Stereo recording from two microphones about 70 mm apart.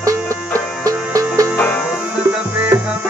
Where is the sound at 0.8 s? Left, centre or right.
Right.